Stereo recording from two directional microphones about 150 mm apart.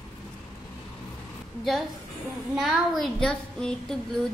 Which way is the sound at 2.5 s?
Centre (ahead or behind).